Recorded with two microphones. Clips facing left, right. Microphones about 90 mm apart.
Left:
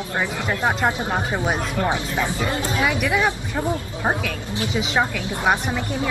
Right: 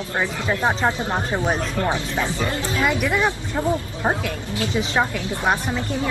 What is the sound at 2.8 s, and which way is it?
Speech, 5° left (ahead or behind).